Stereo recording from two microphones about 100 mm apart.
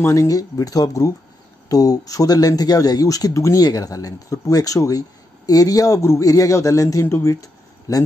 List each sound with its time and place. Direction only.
0.0 s speech: 30° left (ahead or behind)